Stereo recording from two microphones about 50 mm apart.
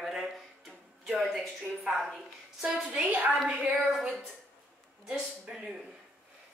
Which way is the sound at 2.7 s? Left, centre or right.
Right.